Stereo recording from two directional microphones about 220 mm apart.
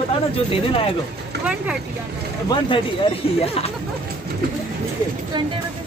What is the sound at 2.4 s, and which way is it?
Speech, 20° left (ahead or behind).